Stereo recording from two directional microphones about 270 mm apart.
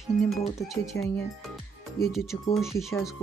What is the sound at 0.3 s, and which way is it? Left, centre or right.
Speech, centre.